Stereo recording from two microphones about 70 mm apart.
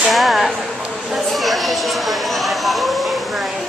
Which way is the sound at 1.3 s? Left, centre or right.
Centre.